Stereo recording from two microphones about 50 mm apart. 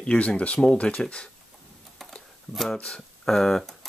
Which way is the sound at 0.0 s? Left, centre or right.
Left.